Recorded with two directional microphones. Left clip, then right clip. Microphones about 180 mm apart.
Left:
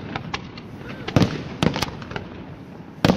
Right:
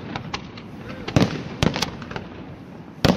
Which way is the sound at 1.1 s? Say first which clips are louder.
Even; 10° right (ahead or behind).